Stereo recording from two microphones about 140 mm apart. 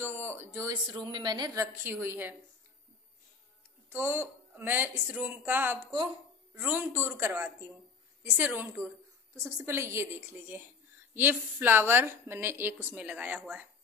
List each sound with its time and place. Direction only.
0.0 s speech: 15° right (ahead or behind)
0.8 s a woman's voice: 30° right (ahead or behind); by 2.3 s 15° right (ahead or behind)
3.9 s a woman's voice: 15° right (ahead or behind)